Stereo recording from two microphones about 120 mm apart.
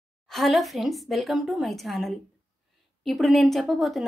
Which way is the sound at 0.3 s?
Centre (ahead or behind).